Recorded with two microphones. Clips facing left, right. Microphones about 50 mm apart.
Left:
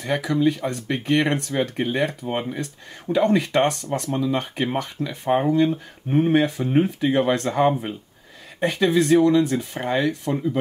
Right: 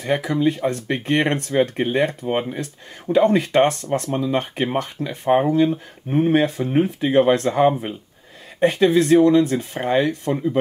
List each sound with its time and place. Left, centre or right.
0.0 s speech: right
3.3 s speech: right
5.3 s speech: centre
7.0 s speech: right
7.5 s speech: centre
8.5 s speech: right